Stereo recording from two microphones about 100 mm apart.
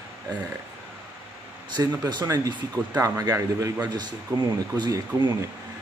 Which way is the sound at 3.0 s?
35° right (ahead or behind).